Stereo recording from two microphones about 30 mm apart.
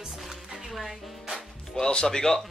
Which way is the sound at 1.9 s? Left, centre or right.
Left.